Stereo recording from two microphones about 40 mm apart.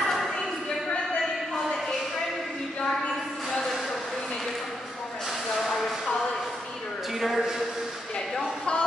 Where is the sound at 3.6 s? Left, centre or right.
Centre.